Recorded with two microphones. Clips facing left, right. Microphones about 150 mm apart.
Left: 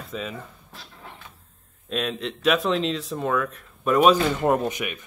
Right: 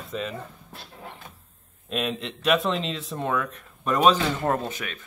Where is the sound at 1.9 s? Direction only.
Centre (ahead or behind); by 5.0 s 15° left (ahead or behind).